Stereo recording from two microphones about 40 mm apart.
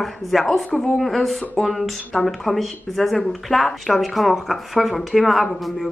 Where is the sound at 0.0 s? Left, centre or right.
Centre.